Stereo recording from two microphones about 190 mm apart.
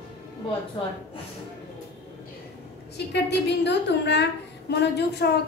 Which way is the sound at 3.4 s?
65° left (ahead or behind).